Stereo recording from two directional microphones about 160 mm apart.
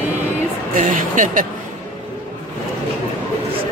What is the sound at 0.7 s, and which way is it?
Speech, 55° right (ahead or behind).